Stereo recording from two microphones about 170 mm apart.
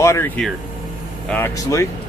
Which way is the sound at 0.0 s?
15° left (ahead or behind).